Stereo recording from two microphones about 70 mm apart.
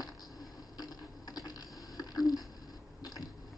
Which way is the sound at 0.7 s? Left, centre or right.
Left.